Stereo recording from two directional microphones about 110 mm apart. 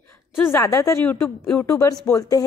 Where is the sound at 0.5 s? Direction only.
25° left (ahead or behind).